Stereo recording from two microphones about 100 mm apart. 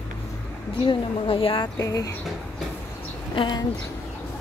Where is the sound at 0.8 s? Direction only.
60° left (ahead or behind).